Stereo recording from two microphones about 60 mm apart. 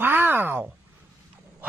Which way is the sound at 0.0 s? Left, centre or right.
Right.